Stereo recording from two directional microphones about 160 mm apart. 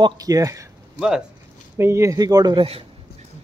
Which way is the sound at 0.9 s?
5° right (ahead or behind).